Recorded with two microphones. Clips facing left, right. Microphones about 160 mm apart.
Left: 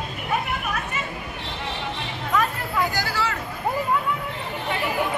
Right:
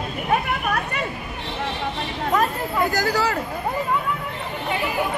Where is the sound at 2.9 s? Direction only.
40° right (ahead or behind).